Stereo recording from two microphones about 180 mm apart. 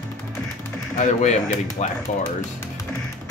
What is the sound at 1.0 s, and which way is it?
Speech, 40° left (ahead or behind).